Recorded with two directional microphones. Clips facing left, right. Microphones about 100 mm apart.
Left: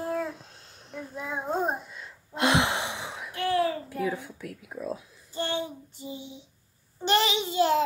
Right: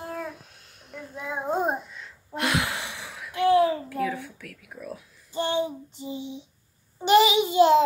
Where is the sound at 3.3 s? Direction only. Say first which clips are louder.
Right 6 dB; 20° right (ahead or behind).